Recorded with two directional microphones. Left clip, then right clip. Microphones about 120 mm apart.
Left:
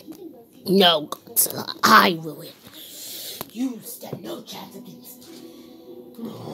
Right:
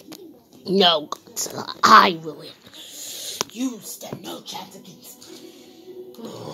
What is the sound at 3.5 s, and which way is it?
Speech, 35° right (ahead or behind).